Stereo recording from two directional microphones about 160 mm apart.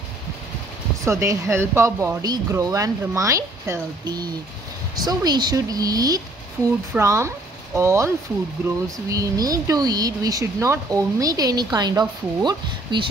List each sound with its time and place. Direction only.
1.0 s speech: 20° right (ahead or behind)
9.1 s speech: 20° right (ahead or behind)